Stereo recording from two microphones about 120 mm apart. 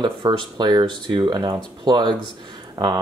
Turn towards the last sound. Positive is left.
turn(degrees=-35)  # may be behind; listen again after turning